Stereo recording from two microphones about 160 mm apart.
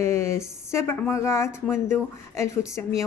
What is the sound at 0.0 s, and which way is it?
Speech, 15° left (ahead or behind).